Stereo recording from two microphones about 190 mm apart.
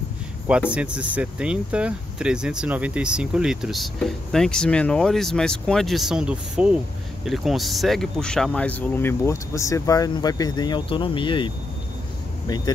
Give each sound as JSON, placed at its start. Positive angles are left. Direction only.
{"t": 0.5, "sound": "speech", "side_deg": -5}